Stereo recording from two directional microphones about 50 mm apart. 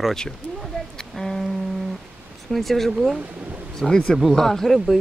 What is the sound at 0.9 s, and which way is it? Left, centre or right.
Music, centre.